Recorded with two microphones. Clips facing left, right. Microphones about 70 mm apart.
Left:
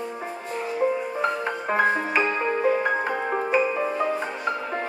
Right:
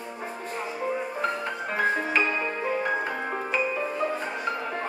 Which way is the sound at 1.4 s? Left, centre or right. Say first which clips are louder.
Left 4 dB; left.